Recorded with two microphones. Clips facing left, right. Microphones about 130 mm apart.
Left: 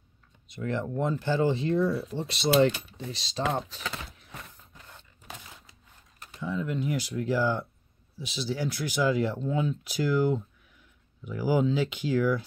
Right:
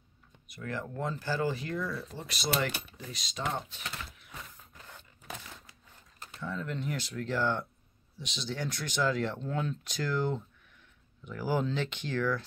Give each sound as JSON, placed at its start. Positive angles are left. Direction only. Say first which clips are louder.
{"t": 0.5, "sound": "speech", "louder": "left 7 dB", "side_deg": 25}
{"t": 3.6, "sound": "speech", "louder": "left 6 dB", "side_deg": 90}
{"t": 6.4, "sound": "speech", "louder": "left 6 dB", "side_deg": 10}